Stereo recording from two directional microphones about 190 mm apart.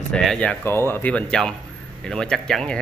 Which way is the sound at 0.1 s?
Centre (ahead or behind).